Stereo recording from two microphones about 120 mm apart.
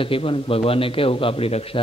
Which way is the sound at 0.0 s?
50° left (ahead or behind).